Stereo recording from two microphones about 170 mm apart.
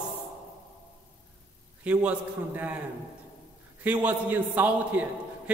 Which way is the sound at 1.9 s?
10° right (ahead or behind).